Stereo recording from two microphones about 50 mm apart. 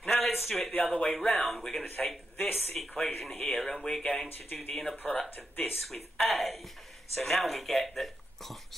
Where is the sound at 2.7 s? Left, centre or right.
Centre.